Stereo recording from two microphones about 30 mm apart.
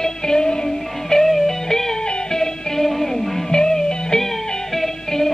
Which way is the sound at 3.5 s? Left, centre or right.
Left.